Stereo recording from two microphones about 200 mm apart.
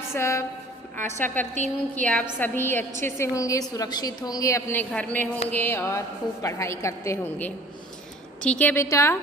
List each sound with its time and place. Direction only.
0.1 s a woman's voice: 15° left (ahead or behind)
1.5 s a woman's voice: 40° right (ahead or behind)
2.3 s a woman's voice: 10° left (ahead or behind)